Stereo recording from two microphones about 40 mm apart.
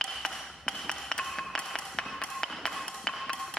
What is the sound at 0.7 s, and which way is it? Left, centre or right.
Ping, centre.